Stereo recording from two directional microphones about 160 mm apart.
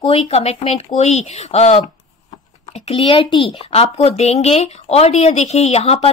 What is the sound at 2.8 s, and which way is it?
Speech, 35° left (ahead or behind).